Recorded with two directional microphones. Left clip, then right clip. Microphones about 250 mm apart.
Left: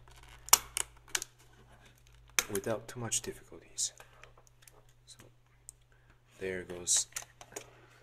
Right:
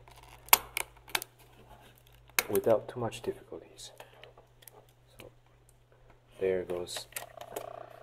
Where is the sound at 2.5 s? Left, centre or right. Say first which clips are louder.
Right 9 dB; left.